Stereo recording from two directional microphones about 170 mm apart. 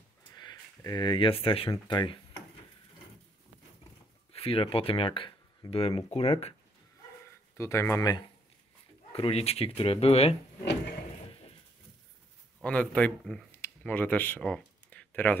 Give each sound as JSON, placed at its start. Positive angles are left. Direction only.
{"t": 0.3, "sound": "speech", "side_deg": 25}
{"t": 4.3, "sound": "speech", "side_deg": 35}
{"t": 7.5, "sound": "speech", "side_deg": 15}
{"t": 9.1, "sound": "speech", "side_deg": 35}
{"t": 10.6, "sound": "wood", "side_deg": 90}
{"t": 12.6, "sound": "speech", "side_deg": 5}